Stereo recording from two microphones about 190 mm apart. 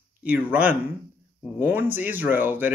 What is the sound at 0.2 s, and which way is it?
Speech, 10° right (ahead or behind).